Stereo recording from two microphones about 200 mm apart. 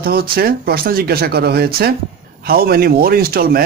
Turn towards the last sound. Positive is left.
turn(degrees=-45)  # may be behind; listen again after turning